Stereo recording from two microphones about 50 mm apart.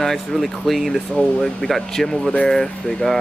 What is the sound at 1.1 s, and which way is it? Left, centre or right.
Speech, centre.